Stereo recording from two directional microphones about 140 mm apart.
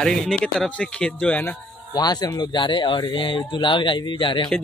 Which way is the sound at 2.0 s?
30° left (ahead or behind).